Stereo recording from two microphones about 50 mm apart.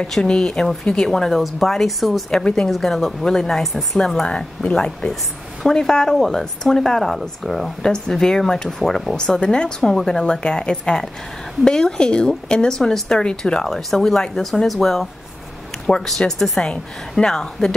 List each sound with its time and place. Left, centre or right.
0.1 s a woman's voice: centre
2.4 s a woman's voice: centre
2.7 s a woman's voice: centre
7.8 s a woman's voice: centre